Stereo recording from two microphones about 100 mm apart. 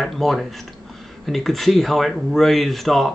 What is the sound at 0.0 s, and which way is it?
Speech, centre (ahead or behind).